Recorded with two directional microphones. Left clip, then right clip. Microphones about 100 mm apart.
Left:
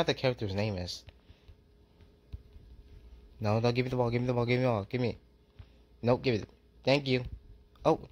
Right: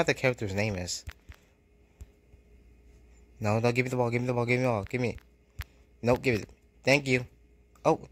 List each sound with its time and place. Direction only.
0.0 s speech: 20° right (ahead or behind)
3.3 s speech: 20° right (ahead or behind)